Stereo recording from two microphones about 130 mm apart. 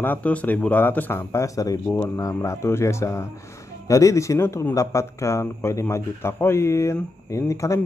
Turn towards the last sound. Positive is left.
turn(degrees=25)  # may be behind; listen again after turning